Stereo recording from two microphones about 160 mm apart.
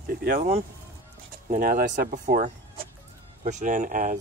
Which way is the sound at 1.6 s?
60° right (ahead or behind).